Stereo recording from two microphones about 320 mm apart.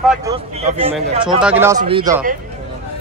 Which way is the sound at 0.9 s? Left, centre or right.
Centre.